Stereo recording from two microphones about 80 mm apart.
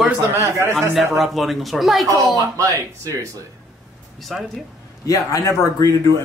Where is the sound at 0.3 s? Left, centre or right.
Right.